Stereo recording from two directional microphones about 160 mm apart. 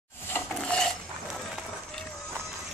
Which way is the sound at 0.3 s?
5° left (ahead or behind).